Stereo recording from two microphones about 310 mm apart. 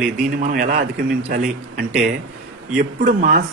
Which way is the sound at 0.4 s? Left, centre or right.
Right.